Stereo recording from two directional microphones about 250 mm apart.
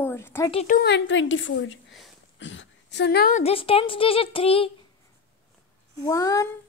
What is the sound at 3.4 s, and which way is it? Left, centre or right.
A woman's voice, left.